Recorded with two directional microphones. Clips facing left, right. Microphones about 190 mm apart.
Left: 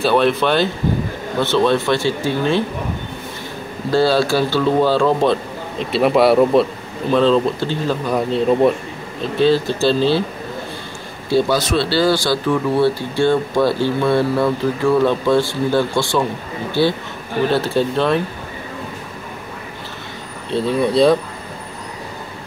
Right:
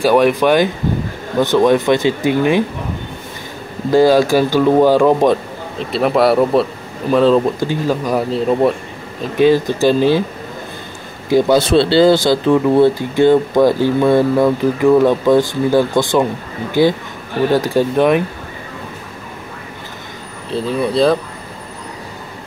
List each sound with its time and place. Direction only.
0.0 s speech: 10° right (ahead or behind)
3.9 s speech: 15° right (ahead or behind)
5.8 s speech: centre (ahead or behind)
9.4 s speech: 15° right (ahead or behind)
11.2 s a man's voice: 15° right (ahead or behind)
11.5 s speech: 25° right (ahead or behind)
20.5 s speech: centre (ahead or behind)